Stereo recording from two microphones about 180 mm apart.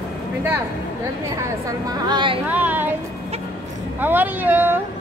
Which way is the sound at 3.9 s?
10° right (ahead or behind).